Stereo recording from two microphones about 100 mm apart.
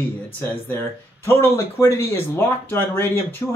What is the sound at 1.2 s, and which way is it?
Speech, 30° left (ahead or behind).